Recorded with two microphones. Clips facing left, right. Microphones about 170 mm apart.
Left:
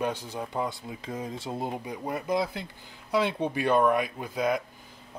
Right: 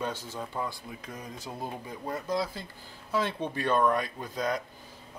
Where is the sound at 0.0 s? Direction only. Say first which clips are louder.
Left 4 dB; 15° left (ahead or behind).